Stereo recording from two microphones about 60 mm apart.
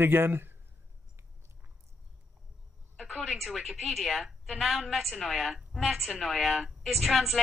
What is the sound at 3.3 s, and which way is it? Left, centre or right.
A woman's voice, centre.